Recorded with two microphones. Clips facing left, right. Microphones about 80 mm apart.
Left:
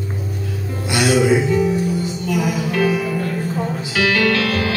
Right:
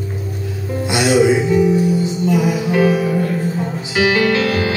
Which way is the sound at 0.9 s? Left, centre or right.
Right.